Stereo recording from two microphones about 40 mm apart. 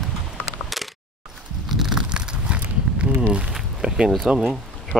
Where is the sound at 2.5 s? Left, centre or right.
Right.